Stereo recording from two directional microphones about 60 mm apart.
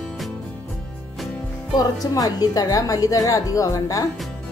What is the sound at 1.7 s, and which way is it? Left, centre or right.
A woman's voice, left.